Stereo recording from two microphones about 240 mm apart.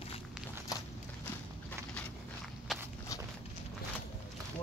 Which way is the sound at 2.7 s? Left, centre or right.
Centre.